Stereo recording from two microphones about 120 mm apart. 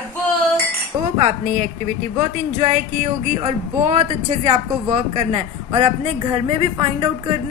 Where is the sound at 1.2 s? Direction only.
70° right (ahead or behind).